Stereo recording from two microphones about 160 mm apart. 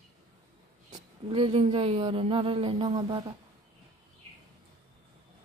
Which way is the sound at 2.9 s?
25° right (ahead or behind).